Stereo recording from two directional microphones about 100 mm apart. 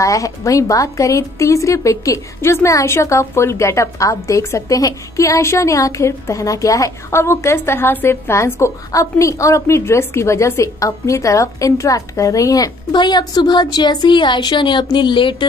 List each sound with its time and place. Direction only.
0.0 s a woman's voice: 35° left (ahead or behind); by 15.4 s 55° left (ahead or behind)